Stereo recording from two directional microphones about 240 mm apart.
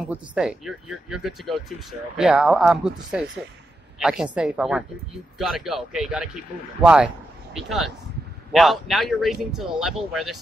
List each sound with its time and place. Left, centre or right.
0.0 s speech: centre